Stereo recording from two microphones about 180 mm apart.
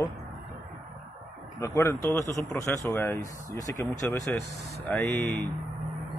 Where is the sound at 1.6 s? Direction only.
15° left (ahead or behind).